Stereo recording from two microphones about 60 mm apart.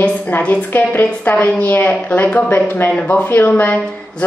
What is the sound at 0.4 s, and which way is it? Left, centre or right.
A woman's voice, left.